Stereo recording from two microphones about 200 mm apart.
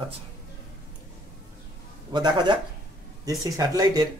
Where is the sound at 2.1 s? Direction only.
20° right (ahead or behind).